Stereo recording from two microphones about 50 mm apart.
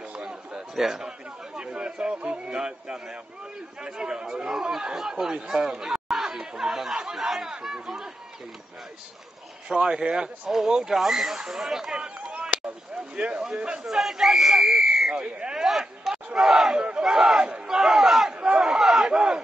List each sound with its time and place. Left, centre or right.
0.0 s a sound: centre
0.7 s chatter: centre
2.4 s speech: centre
9.7 s speech: right
13.8 s speech: centre
15.7 s a sound: centre
16.3 s speech: centre